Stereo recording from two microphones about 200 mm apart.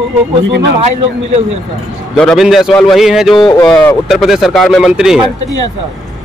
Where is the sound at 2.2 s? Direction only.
Centre (ahead or behind).